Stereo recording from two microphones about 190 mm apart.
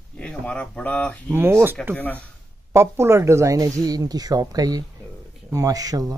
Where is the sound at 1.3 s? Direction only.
10° right (ahead or behind).